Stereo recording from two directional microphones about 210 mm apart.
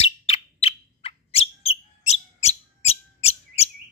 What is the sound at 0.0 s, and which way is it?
Bird, 25° left (ahead or behind).